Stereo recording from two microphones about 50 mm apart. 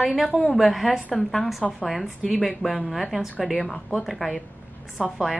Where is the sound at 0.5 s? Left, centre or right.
Centre.